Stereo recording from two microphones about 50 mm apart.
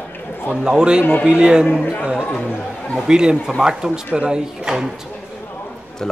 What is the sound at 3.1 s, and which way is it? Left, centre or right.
A man's voice, centre.